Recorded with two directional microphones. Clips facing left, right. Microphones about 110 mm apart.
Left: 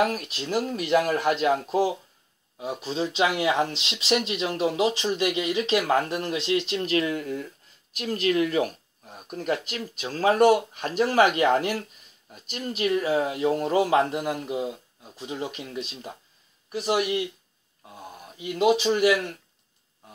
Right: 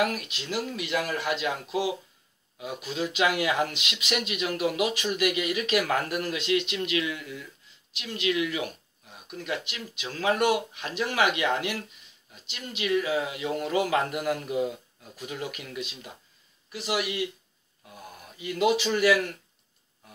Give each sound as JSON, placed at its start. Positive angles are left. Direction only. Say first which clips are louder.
{"t": 0.0, "sound": "speech", "louder": "left 3 dB", "side_deg": 30}
{"t": 2.5, "sound": "speech", "louder": "left 4 dB", "side_deg": 30}
{"t": 17.8, "sound": "speech", "louder": "left 3 dB", "side_deg": 25}